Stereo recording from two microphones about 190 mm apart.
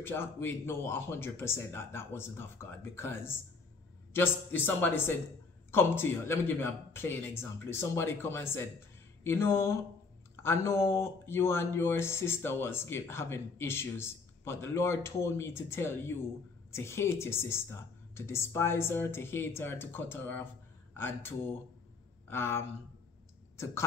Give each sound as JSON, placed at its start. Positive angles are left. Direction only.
{"t": 0.0, "sound": "speech", "side_deg": 10}